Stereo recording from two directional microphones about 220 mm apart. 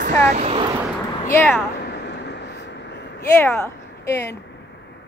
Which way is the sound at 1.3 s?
10° left (ahead or behind).